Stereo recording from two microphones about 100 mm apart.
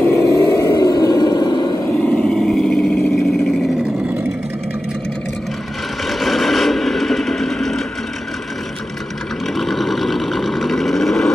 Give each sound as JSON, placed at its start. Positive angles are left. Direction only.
{"t": 0.1, "sound": "vehicle", "side_deg": 30}
{"t": 2.0, "sound": "vehicle", "side_deg": 5}
{"t": 6.0, "sound": "a sound", "side_deg": 0}
{"t": 9.6, "sound": "vehicle", "side_deg": 0}